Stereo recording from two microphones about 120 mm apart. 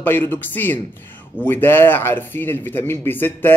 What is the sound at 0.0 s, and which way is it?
Speech, 15° left (ahead or behind).